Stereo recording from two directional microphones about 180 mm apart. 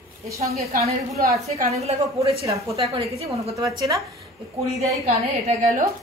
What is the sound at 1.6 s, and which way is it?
Speech, 35° right (ahead or behind).